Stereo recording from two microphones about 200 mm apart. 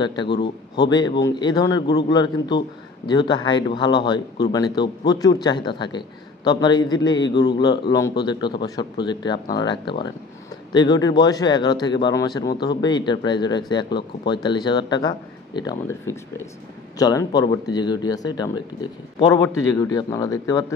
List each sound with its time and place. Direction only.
0.0 s speech: 25° left (ahead or behind)
17.0 s speech: 20° left (ahead or behind)